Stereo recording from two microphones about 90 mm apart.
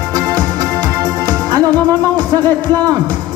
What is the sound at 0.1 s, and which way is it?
Music, 50° right (ahead or behind).